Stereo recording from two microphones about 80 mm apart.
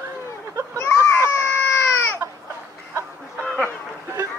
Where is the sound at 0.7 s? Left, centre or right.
Left.